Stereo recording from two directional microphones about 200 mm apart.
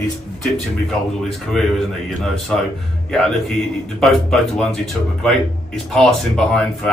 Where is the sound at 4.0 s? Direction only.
Centre (ahead or behind).